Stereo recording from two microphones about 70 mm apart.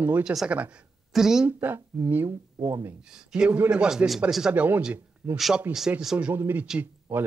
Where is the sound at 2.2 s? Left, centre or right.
Right.